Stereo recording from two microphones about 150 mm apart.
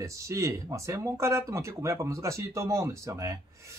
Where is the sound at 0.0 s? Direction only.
20° right (ahead or behind).